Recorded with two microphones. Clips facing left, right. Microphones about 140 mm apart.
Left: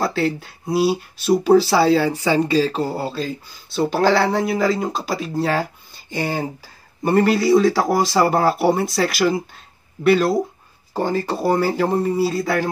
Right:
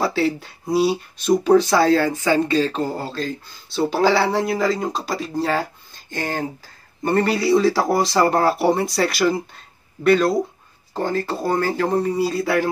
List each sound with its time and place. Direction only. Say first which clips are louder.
0.0 s speech: even; centre (ahead or behind)
11.0 s speech: left 2 dB; 15° left (ahead or behind)